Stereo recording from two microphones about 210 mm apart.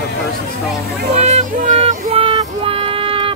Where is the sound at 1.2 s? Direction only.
35° right (ahead or behind).